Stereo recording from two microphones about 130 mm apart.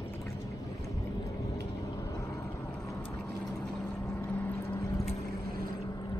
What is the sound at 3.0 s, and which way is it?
Boat, 10° left (ahead or behind).